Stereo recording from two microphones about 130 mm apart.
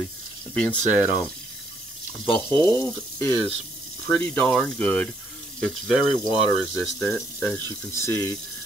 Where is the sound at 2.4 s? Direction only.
20° left (ahead or behind); by 7.2 s centre (ahead or behind).